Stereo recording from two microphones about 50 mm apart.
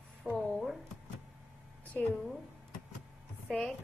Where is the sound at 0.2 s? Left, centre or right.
Right.